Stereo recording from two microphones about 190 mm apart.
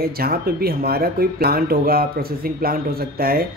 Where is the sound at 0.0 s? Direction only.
55° right (ahead or behind).